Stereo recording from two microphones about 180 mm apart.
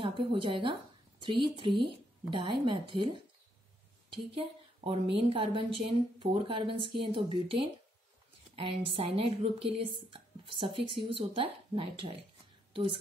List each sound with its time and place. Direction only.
0.0 s a woman's voice: 30° right (ahead or behind)
4.1 s a woman's voice: 30° right (ahead or behind)